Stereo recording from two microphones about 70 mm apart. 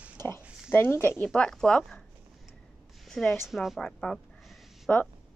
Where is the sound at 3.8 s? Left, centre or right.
Centre.